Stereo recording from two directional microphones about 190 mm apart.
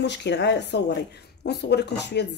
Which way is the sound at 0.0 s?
65° left (ahead or behind).